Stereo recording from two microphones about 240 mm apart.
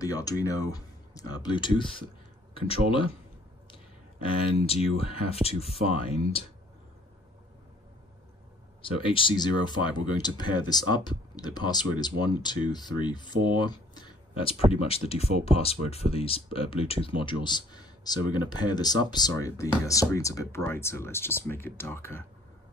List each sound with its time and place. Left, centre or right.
0.2 s speech: centre
8.8 s speech: left
13.6 s a sound: centre
14.7 s speech: left